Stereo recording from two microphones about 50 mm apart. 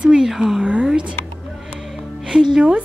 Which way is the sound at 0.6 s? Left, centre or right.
Right.